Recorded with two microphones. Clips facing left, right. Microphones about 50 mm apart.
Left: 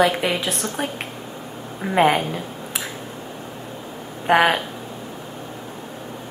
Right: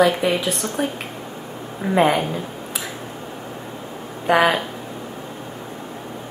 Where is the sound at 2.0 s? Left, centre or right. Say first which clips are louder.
Even; left.